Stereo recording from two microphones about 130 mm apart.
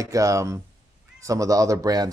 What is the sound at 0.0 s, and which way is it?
Speech, 25° right (ahead or behind).